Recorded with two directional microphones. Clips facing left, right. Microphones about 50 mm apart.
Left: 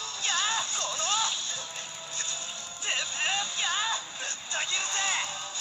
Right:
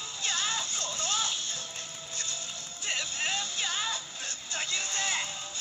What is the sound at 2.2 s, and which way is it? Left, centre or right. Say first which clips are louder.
Music: left 1 dB; left.